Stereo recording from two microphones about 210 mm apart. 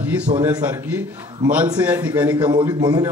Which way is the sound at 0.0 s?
5° right (ahead or behind).